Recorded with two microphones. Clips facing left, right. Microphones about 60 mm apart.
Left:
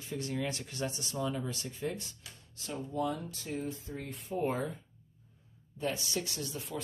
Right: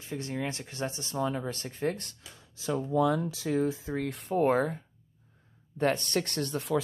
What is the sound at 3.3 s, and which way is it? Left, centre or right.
Speech, right.